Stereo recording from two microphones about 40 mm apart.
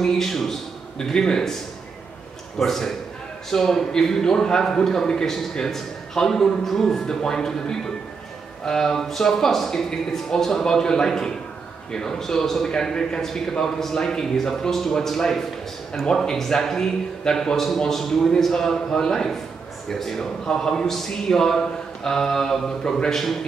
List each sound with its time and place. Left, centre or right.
0.0 s a man's voice: centre
0.9 s a man's voice: centre
2.6 s a man's voice: centre
8.6 s a man's voice: centre